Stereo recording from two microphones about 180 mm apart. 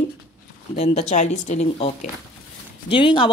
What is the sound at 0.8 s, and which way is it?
Speech, 35° left (ahead or behind).